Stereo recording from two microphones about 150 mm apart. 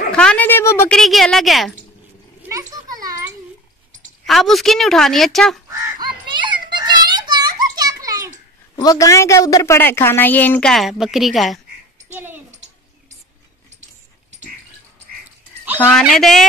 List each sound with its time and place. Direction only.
0.1 s a sound: 5° left (ahead or behind)
0.9 s a woman's voice: centre (ahead or behind)
2.4 s children playing: 25° right (ahead or behind)
4.3 s a woman's voice: centre (ahead or behind)
5.7 s child singing: 30° right (ahead or behind)
8.8 s a woman's voice: 20° left (ahead or behind); by 11.6 s centre (ahead or behind)
12.1 s a sound: 15° right (ahead or behind)
15.8 s a woman's voice: 5° left (ahead or behind)